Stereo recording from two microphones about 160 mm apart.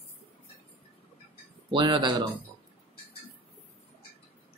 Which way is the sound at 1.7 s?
30° right (ahead or behind).